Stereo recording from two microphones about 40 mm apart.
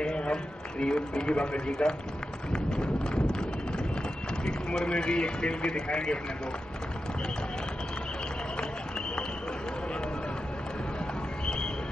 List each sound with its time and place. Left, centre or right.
0.0 s a man's voice: left
2.5 s clip-clop: centre
4.5 s speech: centre
11.4 s a sound: centre